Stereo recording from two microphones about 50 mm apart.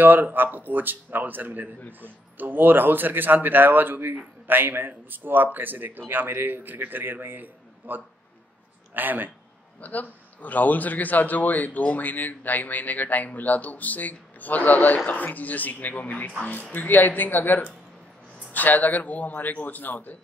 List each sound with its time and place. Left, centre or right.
0.0 s a man's voice: right
9.8 s a man's voice: left